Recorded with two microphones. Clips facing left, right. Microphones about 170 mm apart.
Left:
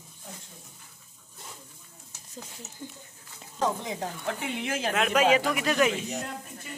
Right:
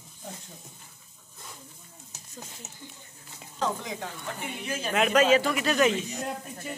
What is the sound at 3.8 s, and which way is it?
Speech, 35° left (ahead or behind).